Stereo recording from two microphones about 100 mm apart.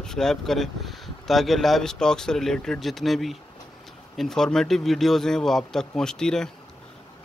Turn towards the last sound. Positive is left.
turn(degrees=5)  # may be behind; listen again after turning